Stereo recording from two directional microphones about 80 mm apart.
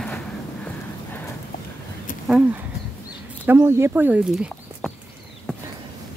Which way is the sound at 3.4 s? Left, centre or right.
Right.